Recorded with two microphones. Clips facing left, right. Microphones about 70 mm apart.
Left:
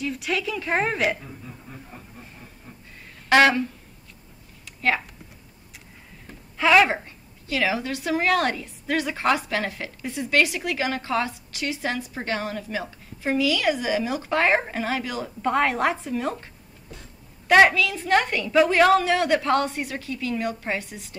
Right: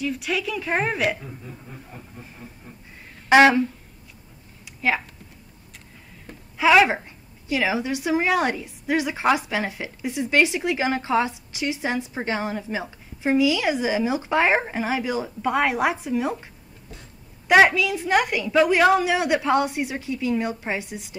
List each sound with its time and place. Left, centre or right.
0.0 s a woman's voice: centre
3.3 s speech: centre
6.6 s a woman's voice: centre
17.5 s a woman's voice: centre